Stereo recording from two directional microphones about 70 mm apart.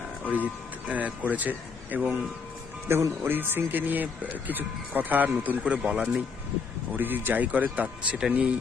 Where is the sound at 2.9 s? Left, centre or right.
Right.